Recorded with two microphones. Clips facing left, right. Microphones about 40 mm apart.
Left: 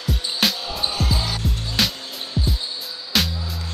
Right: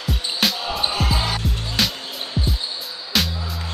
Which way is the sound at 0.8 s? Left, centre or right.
Right.